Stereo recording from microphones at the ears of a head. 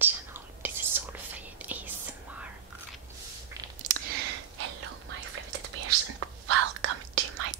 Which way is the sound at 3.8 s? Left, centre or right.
Right.